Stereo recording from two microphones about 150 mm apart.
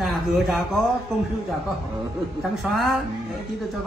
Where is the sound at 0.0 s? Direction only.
Centre (ahead or behind).